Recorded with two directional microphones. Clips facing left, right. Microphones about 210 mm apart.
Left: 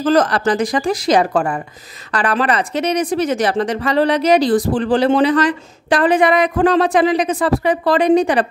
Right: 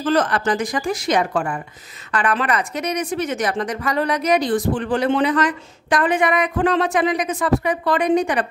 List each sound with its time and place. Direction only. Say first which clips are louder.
0.0 s speech: left 4 dB; 40° left (ahead or behind)